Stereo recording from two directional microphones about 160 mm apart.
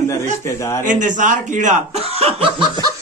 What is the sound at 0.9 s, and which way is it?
Speech, 50° right (ahead or behind).